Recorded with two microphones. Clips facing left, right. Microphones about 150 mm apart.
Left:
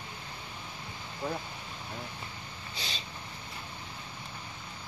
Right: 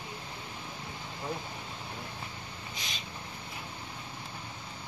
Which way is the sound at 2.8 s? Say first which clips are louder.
Left 4 dB; 30° left (ahead or behind).